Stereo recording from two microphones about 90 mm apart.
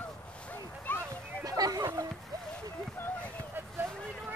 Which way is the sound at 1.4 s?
40° right (ahead or behind).